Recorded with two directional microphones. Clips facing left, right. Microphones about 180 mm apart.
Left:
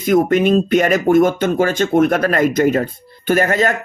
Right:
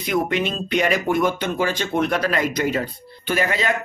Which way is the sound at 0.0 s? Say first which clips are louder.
Left 8 dB; 45° left (ahead or behind).